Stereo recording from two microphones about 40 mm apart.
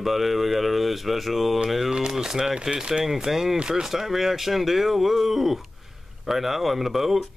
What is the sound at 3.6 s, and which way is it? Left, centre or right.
Speech, centre.